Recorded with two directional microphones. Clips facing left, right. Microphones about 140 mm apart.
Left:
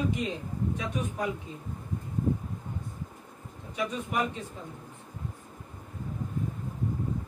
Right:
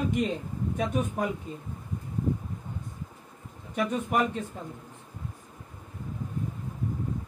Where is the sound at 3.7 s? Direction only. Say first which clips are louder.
Right 5 dB; 50° right (ahead or behind).